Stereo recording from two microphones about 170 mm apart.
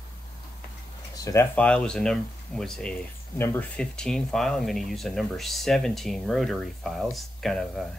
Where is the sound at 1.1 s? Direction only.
20° left (ahead or behind).